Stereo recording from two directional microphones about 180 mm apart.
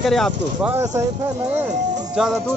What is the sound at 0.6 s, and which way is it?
Speech, 10° right (ahead or behind).